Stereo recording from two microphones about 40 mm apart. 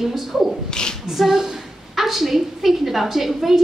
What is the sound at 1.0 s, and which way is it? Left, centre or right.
A woman's voice, centre.